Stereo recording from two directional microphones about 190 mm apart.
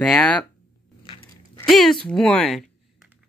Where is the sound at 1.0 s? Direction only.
25° left (ahead or behind).